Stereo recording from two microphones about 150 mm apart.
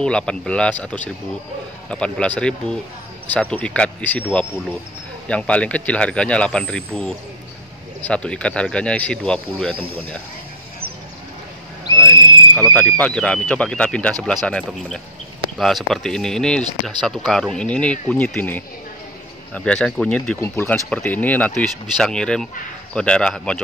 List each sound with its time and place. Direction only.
0.0 s speech: 5° left (ahead or behind)
5.3 s speech: 10° left (ahead or behind)
9.7 s speech: 35° right (ahead or behind)
12.0 s owl: 15° left (ahead or behind)
12.7 s speech: 10° left (ahead or behind)